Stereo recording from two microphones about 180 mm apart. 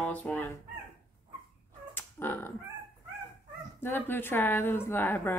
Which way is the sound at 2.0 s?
10° left (ahead or behind).